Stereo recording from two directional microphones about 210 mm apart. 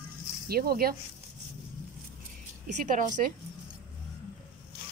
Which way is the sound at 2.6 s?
40° right (ahead or behind).